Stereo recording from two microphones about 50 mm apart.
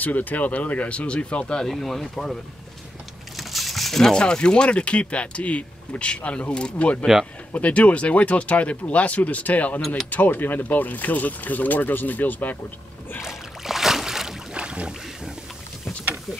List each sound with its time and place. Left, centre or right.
0.0 s speech: left; by 1.7 s centre
1.7 s speech: centre
3.3 s speech: centre; by 9.8 s left
9.8 s speech: centre
10.0 s speech: left
13.2 s boat: centre
14.6 s boat: right